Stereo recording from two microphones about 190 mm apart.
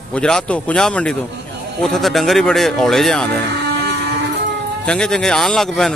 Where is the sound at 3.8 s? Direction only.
60° right (ahead or behind).